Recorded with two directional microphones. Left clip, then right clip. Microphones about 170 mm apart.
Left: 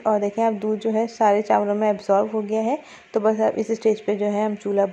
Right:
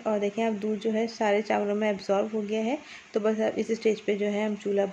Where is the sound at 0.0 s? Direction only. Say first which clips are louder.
Left 7 dB; 15° left (ahead or behind).